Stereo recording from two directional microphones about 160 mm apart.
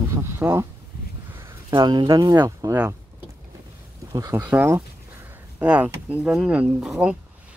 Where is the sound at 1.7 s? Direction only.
30° right (ahead or behind).